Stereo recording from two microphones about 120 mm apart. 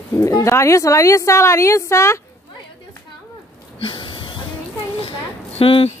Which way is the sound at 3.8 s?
45° left (ahead or behind).